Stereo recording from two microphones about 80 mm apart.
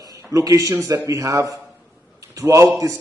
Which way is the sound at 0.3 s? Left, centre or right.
Right.